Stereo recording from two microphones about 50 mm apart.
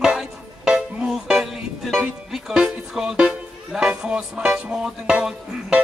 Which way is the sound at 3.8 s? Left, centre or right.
Right.